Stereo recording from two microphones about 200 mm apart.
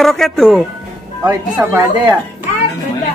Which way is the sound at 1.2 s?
15° right (ahead or behind).